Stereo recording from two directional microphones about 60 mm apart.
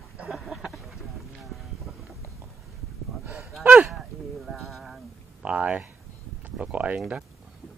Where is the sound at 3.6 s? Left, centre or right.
Right.